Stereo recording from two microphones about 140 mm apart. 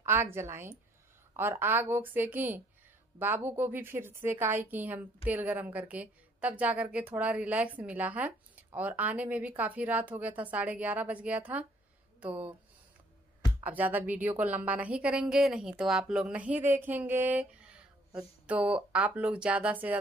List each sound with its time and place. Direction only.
0.0 s a woman's voice: 15° right (ahead or behind)
13.7 s a woman's voice: 10° right (ahead or behind)